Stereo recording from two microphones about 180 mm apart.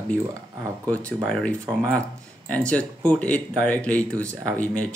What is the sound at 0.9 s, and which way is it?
Speech, 5° left (ahead or behind).